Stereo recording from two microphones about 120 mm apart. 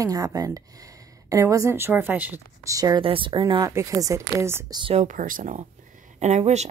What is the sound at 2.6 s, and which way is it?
Speech, 30° right (ahead or behind).